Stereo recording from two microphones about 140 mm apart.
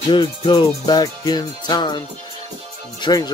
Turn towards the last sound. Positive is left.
turn(degrees=30)  # may be behind; listen again after turning